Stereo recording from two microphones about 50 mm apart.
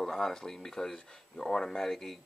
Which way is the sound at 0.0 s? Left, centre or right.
Centre.